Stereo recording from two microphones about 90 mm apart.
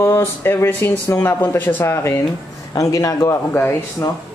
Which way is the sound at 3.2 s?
30° left (ahead or behind).